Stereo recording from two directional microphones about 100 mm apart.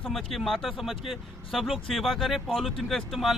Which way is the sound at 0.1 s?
Centre (ahead or behind).